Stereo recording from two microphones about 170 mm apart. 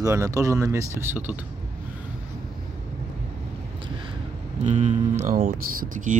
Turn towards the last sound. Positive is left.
turn(degrees=-50)  # may be behind; listen again after turning